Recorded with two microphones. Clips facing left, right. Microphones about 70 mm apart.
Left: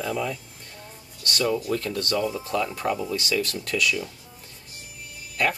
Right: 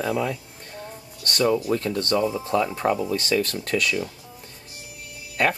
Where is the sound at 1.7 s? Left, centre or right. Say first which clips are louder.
Right 3 dB; right.